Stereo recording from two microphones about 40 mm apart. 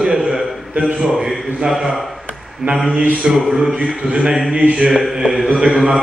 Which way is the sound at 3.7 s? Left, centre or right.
Right.